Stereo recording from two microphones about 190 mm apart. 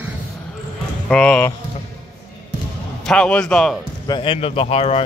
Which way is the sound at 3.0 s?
5° left (ahead or behind).